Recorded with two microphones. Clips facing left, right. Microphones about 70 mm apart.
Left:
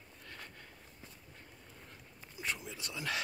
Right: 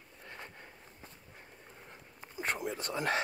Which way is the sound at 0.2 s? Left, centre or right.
Right.